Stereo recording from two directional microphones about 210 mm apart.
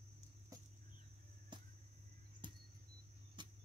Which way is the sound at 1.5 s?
20° right (ahead or behind).